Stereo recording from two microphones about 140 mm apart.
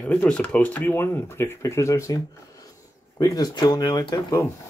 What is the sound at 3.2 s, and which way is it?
Speech, 30° left (ahead or behind).